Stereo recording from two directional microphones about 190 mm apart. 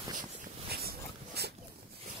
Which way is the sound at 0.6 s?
55° right (ahead or behind).